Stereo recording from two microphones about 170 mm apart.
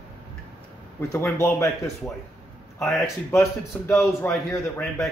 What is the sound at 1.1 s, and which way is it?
Speech, 15° left (ahead or behind).